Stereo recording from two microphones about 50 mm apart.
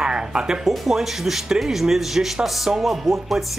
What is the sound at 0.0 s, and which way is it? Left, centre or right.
Music, centre.